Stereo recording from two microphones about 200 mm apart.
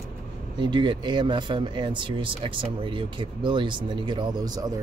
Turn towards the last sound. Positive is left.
turn(degrees=-20)  # may be behind; listen again after turning